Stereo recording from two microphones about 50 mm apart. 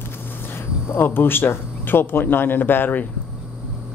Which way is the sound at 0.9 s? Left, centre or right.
Left.